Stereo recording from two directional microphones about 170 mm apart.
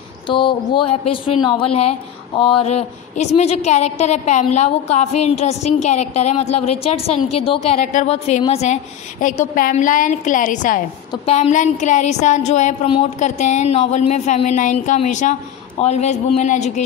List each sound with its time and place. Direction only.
0.3 s speech: 30° left (ahead or behind)
9.2 s speech: 50° left (ahead or behind)